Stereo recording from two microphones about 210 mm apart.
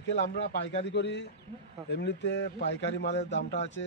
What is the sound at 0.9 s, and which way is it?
A man's voice, 55° left (ahead or behind).